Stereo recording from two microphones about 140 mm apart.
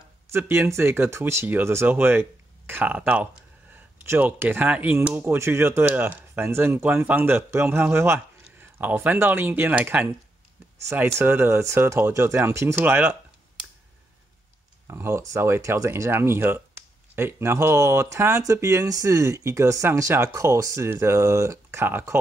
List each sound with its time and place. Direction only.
0.3 s speech: 15° right (ahead or behind)
14.9 s speech: 20° right (ahead or behind)